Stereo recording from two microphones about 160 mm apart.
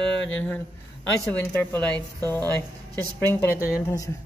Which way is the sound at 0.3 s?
10° left (ahead or behind).